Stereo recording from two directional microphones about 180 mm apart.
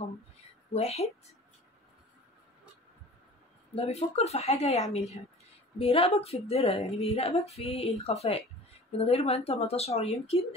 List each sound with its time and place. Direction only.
0.7 s a woman's voice: 35° left (ahead or behind)
3.7 s a woman's voice: 35° left (ahead or behind)